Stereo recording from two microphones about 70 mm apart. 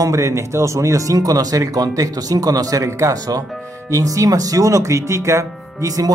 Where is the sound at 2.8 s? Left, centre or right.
Right.